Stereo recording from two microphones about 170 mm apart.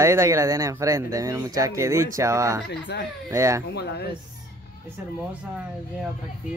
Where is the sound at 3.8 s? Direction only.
75° left (ahead or behind).